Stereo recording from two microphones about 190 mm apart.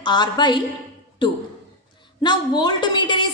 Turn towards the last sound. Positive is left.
turn(degrees=25)  # may be behind; listen again after turning